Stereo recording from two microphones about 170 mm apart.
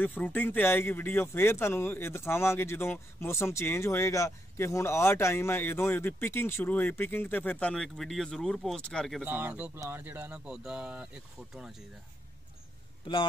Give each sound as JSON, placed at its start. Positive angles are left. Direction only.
{"t": 0.0, "sound": "speech", "side_deg": 10}
{"t": 9.2, "sound": "speech", "side_deg": -10}
{"t": 13.0, "sound": "a man's voice", "side_deg": 30}